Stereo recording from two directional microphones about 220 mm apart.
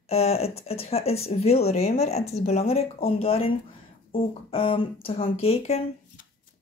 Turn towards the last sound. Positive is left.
turn(degrees=30)  # may be behind; listen again after turning